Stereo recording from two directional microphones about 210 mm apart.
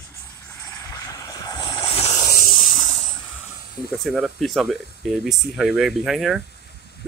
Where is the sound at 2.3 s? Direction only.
35° left (ahead or behind).